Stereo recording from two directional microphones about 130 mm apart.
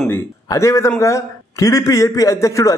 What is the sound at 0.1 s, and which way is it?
A man's voice, 25° left (ahead or behind).